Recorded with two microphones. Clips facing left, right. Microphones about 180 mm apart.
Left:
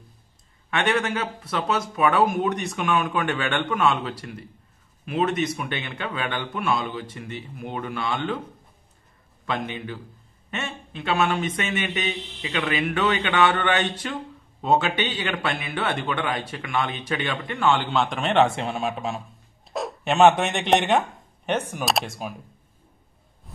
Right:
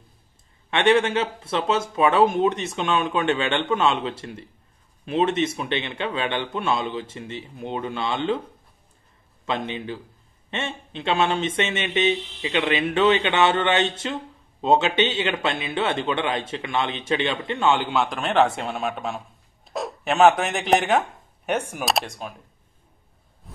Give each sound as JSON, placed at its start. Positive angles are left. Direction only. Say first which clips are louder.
{"t": 0.7, "sound": "speech", "louder": "right 5 dB", "side_deg": -25}
{"t": 9.5, "sound": "speech", "louder": "right 2 dB", "side_deg": -25}
{"t": 17.9, "sound": "a man's voice", "louder": "even", "side_deg": 0}
{"t": 21.8, "sound": "speech", "louder": "even", "side_deg": 0}